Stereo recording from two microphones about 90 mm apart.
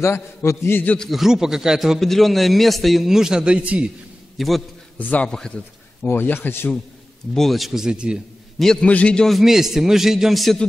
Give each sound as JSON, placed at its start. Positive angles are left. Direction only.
{"t": 0.0, "sound": "a man's voice", "side_deg": 30}
{"t": 0.9, "sound": "a man's voice", "side_deg": 0}
{"t": 4.4, "sound": "a man's voice", "side_deg": 0}
{"t": 4.9, "sound": "a man's voice", "side_deg": 20}
{"t": 5.3, "sound": "a man's voice", "side_deg": 5}
{"t": 6.0, "sound": "a man's voice", "side_deg": 25}
{"t": 7.3, "sound": "a man's voice", "side_deg": 0}
{"t": 8.8, "sound": "a man's voice", "side_deg": 15}